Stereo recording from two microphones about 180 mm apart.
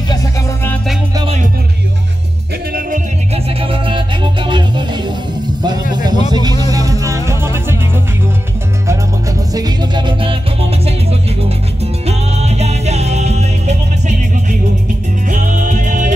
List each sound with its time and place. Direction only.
3.4 s music: 30° right (ahead or behind)
5.9 s vehicle: 25° right (ahead or behind)
6.3 s music: 20° right (ahead or behind)
9.5 s music: 20° right (ahead or behind); by 16.1 s 50° right (ahead or behind)